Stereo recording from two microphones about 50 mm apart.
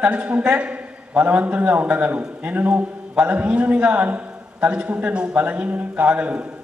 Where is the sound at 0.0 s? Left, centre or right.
Right.